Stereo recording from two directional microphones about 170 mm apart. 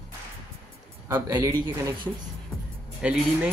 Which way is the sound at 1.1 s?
20° right (ahead or behind).